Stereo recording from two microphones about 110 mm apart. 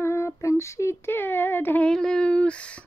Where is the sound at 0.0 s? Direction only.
25° left (ahead or behind).